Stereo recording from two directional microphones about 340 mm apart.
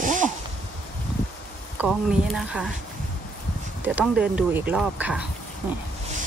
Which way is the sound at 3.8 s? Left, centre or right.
Centre.